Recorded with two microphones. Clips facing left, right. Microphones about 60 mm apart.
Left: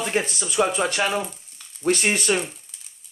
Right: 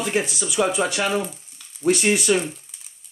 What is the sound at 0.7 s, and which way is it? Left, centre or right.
Speech, left.